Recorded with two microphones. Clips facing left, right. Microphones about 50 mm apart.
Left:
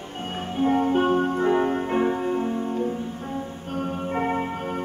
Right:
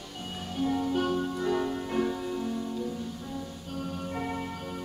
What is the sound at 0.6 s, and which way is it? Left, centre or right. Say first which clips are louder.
Music: left 7 dB; left.